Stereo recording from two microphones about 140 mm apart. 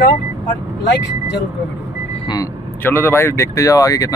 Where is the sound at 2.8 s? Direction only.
15° left (ahead or behind).